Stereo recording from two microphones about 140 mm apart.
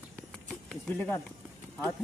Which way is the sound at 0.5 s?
5° left (ahead or behind).